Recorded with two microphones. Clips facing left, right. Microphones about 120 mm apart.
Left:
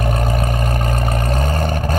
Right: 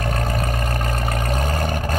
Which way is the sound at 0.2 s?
Centre (ahead or behind).